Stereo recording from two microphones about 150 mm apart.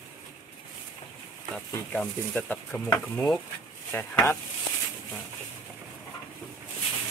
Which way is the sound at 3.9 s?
15° left (ahead or behind).